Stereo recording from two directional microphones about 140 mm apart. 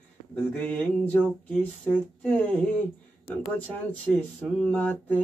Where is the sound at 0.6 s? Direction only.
10° left (ahead or behind).